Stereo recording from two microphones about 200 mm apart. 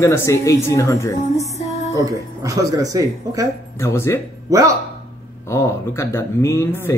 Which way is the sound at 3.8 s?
10° left (ahead or behind).